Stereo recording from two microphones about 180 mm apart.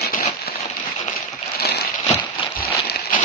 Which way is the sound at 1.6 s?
65° left (ahead or behind).